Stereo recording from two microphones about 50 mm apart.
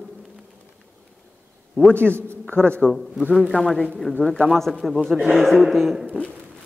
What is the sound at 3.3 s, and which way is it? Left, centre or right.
A man's voice, centre.